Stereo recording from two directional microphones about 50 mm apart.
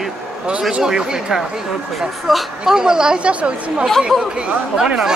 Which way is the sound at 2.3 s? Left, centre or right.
Centre.